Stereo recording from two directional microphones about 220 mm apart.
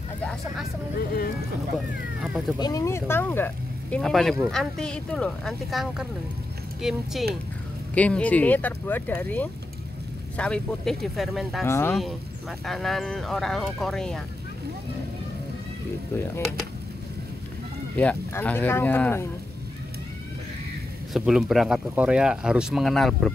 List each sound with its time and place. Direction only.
0.2 s speech: 5° left (ahead or behind)
0.9 s speech: 45° left (ahead or behind)
2.2 s speech: centre (ahead or behind)
2.6 s speech: 15° left (ahead or behind)
11.6 s speech: 10° left (ahead or behind)
17.9 s speech: 5° left (ahead or behind)
21.1 s speech: centre (ahead or behind)